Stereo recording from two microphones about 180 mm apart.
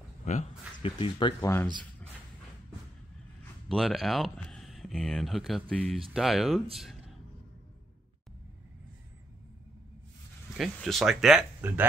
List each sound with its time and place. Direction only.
0.2 s speech: 40° left (ahead or behind)
0.9 s speech: 25° left (ahead or behind)
3.6 s speech: centre (ahead or behind)
10.6 s speech: centre (ahead or behind)